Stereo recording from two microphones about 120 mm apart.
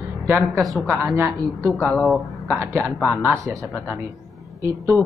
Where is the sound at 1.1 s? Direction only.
25° right (ahead or behind).